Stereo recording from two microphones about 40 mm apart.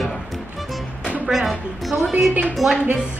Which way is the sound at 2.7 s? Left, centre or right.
Right.